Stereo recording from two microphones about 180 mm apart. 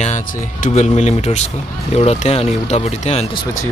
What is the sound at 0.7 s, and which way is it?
Speech, 40° left (ahead or behind).